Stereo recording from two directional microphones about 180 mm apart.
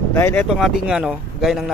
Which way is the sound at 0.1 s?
10° left (ahead or behind).